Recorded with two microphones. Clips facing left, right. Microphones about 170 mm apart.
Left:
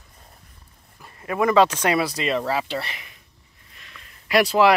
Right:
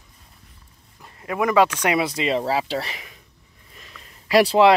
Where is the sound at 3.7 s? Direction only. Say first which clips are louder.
Right 3 dB; 35° right (ahead or behind).